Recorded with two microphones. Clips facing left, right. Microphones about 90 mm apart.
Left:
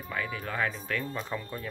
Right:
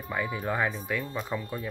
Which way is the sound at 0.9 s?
10° right (ahead or behind).